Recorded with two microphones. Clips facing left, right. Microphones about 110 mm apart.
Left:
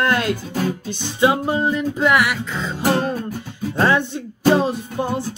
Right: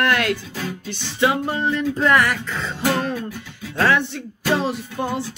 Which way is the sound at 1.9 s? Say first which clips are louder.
Right 1 dB; 5° left (ahead or behind).